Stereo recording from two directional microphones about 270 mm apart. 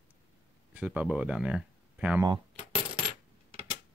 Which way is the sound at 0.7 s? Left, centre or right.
Centre.